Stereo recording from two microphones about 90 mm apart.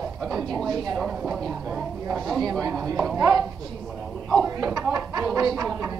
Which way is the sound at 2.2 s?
45° right (ahead or behind).